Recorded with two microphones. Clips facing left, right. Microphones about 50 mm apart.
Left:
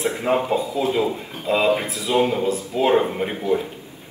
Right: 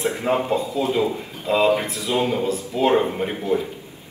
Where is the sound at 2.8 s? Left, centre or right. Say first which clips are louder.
Even; centre.